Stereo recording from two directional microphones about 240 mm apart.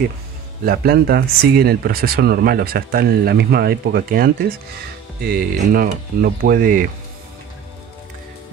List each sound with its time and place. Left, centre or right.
0.7 s speech: right